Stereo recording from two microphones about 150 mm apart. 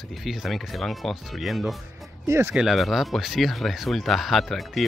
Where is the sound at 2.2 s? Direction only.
15° right (ahead or behind).